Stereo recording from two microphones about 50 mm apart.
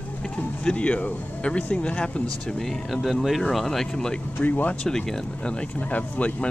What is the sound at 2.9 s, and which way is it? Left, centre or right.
Speech, centre.